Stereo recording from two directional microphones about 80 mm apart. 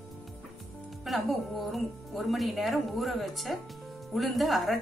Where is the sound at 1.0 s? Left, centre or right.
Centre.